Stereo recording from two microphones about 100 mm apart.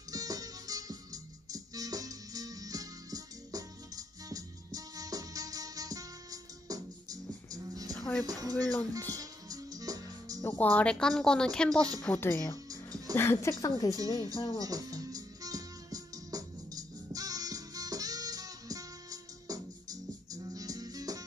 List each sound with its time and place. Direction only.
0.1 s music: 40° right (ahead or behind)
7.9 s music: 5° left (ahead or behind)
8.3 s speech: 35° right (ahead or behind)
9.1 s music: 35° right (ahead or behind)
10.5 s speech: 15° left (ahead or behind)
12.0 s speech: 20° left (ahead or behind)
12.6 s music: 40° right (ahead or behind)
13.1 s speech: 25° left (ahead or behind)
13.8 s speech: 35° right (ahead or behind)
14.6 s music: 35° right (ahead or behind)